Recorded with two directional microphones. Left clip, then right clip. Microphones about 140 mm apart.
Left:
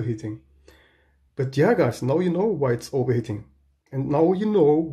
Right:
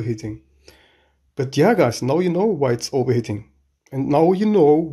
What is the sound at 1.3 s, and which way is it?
Speech, 40° right (ahead or behind).